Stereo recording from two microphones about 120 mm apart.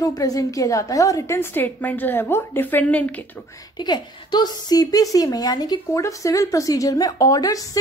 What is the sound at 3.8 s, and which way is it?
Speech, 35° left (ahead or behind).